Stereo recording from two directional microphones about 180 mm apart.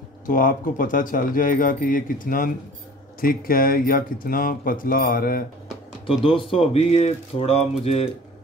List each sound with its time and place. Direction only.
0.3 s speech: 50° left (ahead or behind)
6.0 s speech: 30° left (ahead or behind)